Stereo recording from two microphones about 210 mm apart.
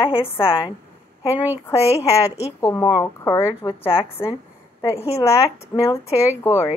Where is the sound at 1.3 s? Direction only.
10° right (ahead or behind).